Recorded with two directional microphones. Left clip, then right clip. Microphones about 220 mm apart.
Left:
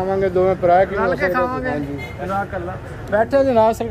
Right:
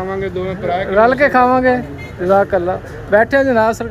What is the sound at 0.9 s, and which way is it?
Speech, 30° right (ahead or behind).